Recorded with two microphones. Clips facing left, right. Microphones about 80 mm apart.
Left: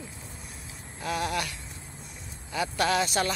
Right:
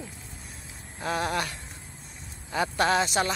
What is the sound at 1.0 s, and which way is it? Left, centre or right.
Speech, right.